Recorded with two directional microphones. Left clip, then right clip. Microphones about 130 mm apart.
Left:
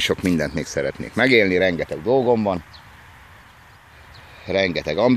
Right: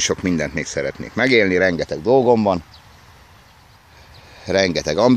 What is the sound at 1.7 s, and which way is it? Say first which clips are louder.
Speech: right 3 dB; 45° right (ahead or behind).